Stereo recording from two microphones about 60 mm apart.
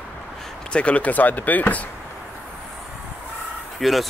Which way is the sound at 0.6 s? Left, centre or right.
Centre.